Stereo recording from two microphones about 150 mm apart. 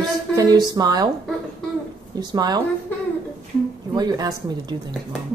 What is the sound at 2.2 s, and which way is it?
Speech, 30° right (ahead or behind).